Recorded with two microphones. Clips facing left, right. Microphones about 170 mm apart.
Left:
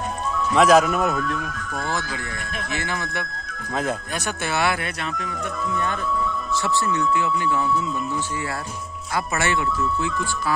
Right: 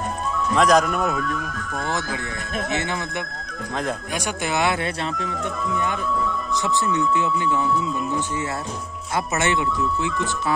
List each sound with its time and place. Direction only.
0.6 s speech: 5° left (ahead or behind)
1.9 s speech: 20° right (ahead or behind)
6.6 s speech: 15° right (ahead or behind)
9.1 s speech: 20° right (ahead or behind)